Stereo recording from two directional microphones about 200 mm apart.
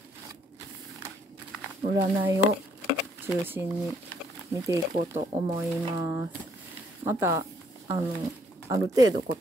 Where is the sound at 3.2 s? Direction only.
10° right (ahead or behind).